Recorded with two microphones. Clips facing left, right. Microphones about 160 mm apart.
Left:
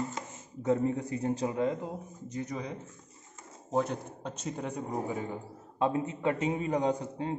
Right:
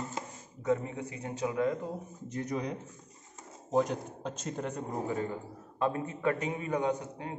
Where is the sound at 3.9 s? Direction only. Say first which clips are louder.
Right 1 dB; centre (ahead or behind).